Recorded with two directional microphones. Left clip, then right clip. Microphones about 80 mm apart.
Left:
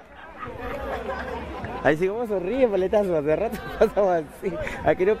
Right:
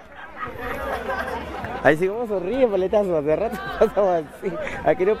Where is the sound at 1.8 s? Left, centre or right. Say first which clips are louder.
Right 3 dB; centre.